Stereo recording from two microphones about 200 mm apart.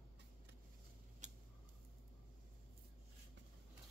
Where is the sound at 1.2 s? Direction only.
35° right (ahead or behind).